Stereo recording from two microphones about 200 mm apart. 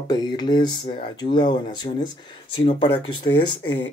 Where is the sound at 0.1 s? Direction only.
20° left (ahead or behind).